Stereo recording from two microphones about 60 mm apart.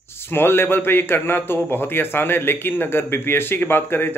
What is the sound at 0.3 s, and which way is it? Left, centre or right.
A man's voice, left.